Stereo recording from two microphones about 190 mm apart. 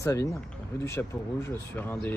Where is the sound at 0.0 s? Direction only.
15° left (ahead or behind).